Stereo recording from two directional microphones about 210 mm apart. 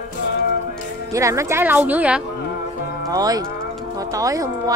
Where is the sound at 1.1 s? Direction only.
15° right (ahead or behind).